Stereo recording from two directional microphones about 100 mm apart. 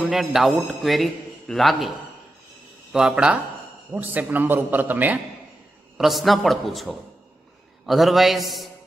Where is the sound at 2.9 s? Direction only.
5° right (ahead or behind).